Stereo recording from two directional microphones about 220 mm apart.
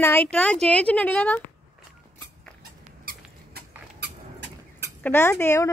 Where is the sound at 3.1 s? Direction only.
40° right (ahead or behind).